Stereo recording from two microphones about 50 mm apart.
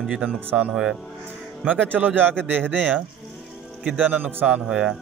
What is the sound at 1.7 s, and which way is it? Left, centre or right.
Speech, right.